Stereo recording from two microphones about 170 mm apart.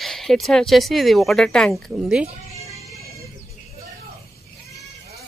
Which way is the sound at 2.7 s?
20° right (ahead or behind).